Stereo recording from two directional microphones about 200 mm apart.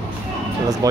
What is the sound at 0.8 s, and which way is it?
Speech, 15° right (ahead or behind).